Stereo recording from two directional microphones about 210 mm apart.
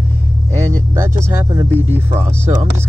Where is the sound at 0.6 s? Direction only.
15° right (ahead or behind).